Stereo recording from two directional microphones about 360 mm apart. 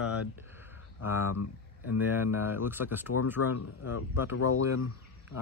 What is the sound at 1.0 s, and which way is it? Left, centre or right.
Speech, left.